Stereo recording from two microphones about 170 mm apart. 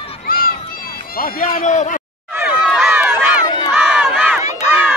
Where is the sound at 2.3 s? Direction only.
5° right (ahead or behind).